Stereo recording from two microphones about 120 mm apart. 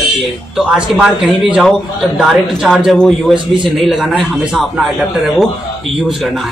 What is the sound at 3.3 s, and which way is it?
Speech, 45° right (ahead or behind).